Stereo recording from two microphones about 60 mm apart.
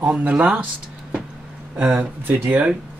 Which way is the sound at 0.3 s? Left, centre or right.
Centre.